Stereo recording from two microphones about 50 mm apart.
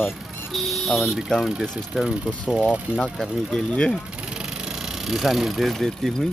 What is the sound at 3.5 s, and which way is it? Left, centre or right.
Speech, left.